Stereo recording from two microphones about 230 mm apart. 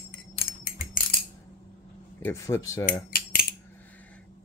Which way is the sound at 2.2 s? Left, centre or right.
Centre.